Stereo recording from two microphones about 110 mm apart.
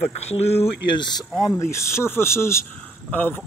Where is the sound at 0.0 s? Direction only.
70° left (ahead or behind).